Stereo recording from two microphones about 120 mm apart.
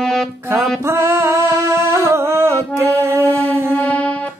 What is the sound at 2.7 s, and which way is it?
Mantra, 25° right (ahead or behind).